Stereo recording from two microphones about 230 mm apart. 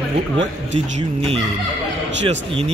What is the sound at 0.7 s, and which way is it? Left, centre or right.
Speech, right.